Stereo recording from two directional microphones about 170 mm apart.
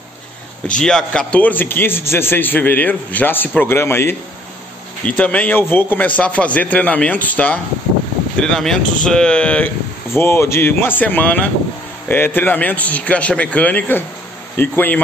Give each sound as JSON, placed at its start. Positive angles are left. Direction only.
{"t": 0.7, "sound": "a man's voice", "side_deg": 5}